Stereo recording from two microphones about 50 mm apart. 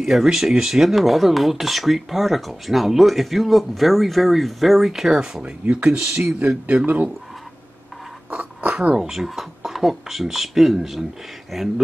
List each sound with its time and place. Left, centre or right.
0.0 s speech: centre
5.4 s speech: right
8.4 s a sound: right
8.9 s speech: centre